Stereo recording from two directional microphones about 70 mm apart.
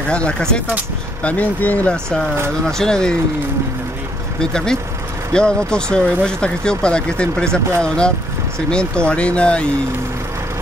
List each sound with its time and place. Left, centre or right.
0.1 s speech: centre
1.2 s speech: left
2.8 s speech: centre
4.4 s speech: centre